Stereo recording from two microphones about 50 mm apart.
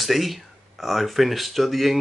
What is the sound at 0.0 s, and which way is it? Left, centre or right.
Speech, centre.